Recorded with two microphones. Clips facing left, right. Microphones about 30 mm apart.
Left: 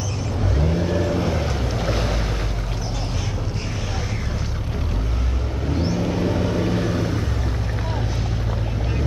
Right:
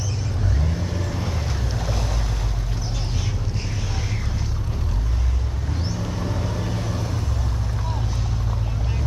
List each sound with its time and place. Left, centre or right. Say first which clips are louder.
0.6 s vehicle: left 7 dB; centre
5.9 s vehicle: left 6 dB; left